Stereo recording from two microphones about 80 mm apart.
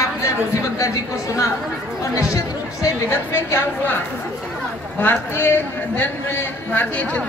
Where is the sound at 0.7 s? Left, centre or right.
Left.